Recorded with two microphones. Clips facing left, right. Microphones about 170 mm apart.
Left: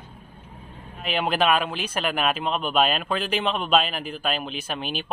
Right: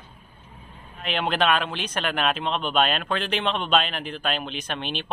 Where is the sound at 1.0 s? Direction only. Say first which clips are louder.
Left 1 dB; 5° left (ahead or behind).